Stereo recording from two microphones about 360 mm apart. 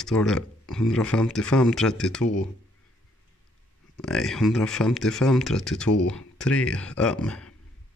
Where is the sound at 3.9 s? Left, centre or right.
Centre.